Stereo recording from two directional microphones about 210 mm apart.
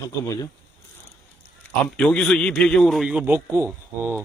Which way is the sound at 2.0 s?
5° left (ahead or behind).